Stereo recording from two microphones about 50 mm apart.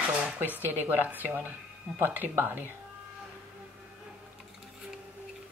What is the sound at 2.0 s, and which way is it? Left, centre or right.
Speech, right.